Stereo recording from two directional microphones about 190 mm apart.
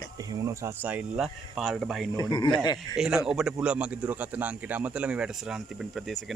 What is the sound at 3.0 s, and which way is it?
A man's voice, 5° right (ahead or behind).